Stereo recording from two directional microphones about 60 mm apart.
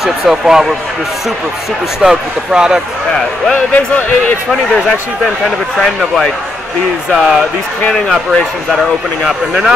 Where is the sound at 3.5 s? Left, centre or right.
Left.